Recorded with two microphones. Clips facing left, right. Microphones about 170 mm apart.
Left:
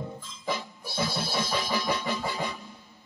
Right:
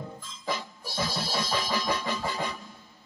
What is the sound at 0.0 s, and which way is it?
Music, 15° left (ahead or behind).